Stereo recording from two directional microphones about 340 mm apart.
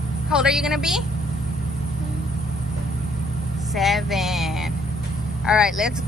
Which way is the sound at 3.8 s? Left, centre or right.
Centre.